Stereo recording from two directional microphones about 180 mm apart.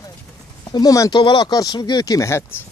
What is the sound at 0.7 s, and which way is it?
Speech, 20° left (ahead or behind).